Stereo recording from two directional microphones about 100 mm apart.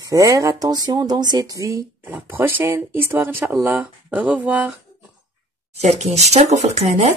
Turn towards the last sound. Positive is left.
turn(degrees=-90)